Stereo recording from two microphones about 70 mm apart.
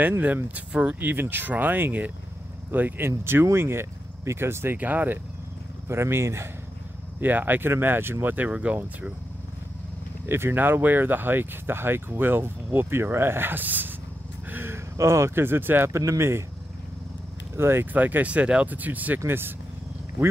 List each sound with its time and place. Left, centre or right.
0.2 s speech: right
4.7 s speech: right
5.9 s speech: right
7.2 s speech: right
8.5 s speech: centre
10.2 s speech: right
15.9 s speech: right
17.6 s speech: right
17.9 s speech: right